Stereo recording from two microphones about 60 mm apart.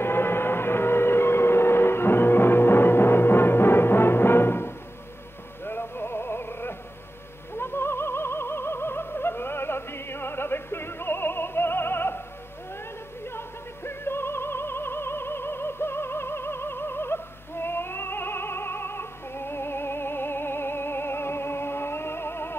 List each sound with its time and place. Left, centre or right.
0.0 s vehicle: left
5.7 s music: left
7.5 s opera: left
13.8 s opera: left